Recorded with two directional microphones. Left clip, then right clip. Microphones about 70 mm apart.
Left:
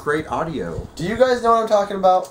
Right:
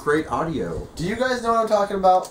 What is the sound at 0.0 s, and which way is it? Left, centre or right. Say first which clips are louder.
Speech: even; centre.